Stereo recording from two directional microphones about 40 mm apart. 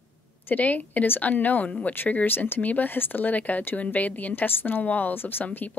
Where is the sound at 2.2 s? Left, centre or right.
Left.